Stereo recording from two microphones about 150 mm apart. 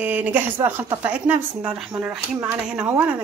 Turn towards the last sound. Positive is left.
turn(degrees=-10)  # may be behind; listen again after turning